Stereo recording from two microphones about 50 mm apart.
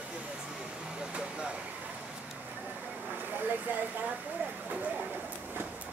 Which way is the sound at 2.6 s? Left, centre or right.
Centre.